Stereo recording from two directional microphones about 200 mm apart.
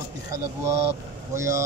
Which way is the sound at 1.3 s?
15° right (ahead or behind).